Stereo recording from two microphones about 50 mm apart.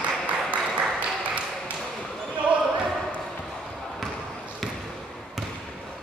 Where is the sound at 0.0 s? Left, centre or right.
Right.